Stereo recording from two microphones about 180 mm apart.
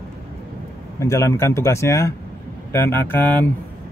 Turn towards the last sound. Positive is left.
turn(degrees=10)  # may be behind; listen again after turning